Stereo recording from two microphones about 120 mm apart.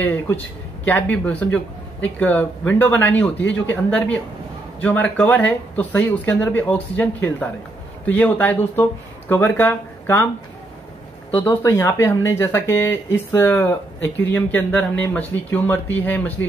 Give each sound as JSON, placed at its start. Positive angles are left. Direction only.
{"t": 0.0, "sound": "speech", "side_deg": 15}
{"t": 11.4, "sound": "speech", "side_deg": 25}